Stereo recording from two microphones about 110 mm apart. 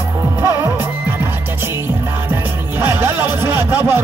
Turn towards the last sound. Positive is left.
turn(degrees=-20)  # may be behind; listen again after turning